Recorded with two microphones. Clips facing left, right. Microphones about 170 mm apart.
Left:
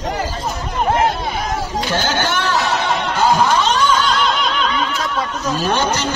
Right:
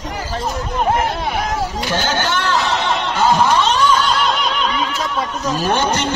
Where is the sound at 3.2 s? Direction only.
Centre (ahead or behind).